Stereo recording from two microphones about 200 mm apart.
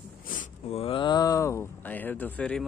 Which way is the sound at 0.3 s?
35° left (ahead or behind).